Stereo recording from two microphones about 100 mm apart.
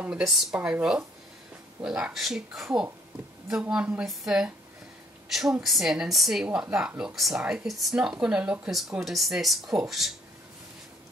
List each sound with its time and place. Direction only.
0.2 s speech: 5° right (ahead or behind)
0.6 s a woman's voice: 15° right (ahead or behind)
4.0 s a woman's voice: centre (ahead or behind)